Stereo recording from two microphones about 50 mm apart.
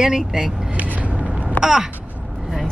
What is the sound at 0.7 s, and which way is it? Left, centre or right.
Vehicle, right.